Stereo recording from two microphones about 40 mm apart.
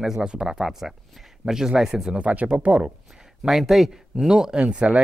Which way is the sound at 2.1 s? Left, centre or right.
Right.